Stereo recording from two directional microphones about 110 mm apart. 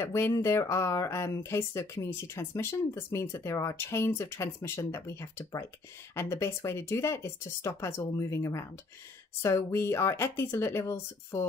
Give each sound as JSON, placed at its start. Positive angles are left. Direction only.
{"t": 0.0, "sound": "speech", "side_deg": 25}